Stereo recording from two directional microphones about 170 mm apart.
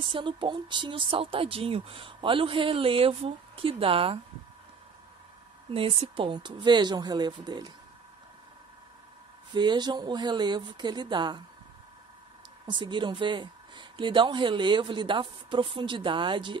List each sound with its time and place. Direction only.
0.0 s speech: 30° right (ahead or behind)
5.7 s speech: 35° right (ahead or behind)
9.5 s speech: 25° right (ahead or behind)
12.6 s speech: 25° right (ahead or behind)